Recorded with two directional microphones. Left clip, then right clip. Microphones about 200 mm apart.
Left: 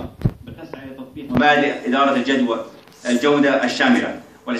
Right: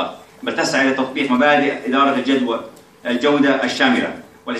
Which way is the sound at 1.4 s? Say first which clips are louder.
Left 1 dB; 45° left (ahead or behind).